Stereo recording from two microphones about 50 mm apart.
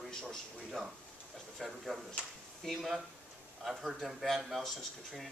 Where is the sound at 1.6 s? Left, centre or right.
Centre.